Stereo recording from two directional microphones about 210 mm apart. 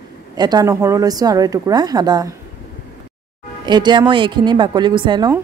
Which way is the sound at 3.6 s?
20° right (ahead or behind).